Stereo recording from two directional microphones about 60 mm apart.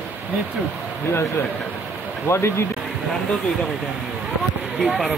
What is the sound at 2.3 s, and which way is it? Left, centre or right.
Speech, left.